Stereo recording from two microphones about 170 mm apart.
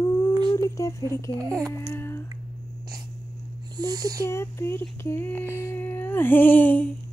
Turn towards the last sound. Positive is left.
turn(degrees=10)  # may be behind; listen again after turning